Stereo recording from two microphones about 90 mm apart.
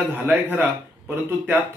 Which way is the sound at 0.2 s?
20° right (ahead or behind).